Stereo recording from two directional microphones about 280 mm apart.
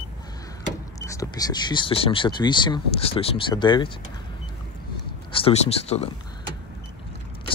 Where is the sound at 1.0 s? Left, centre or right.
Centre.